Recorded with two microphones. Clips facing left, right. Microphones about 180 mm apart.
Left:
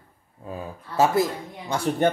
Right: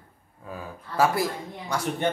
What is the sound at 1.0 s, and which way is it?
Speech, 20° left (ahead or behind).